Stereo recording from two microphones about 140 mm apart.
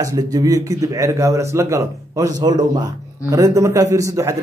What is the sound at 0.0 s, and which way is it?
A man's voice, 25° right (ahead or behind).